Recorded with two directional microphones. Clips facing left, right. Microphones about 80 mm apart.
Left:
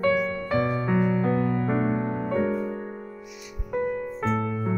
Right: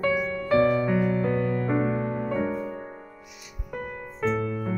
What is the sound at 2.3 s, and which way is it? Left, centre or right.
Music, centre.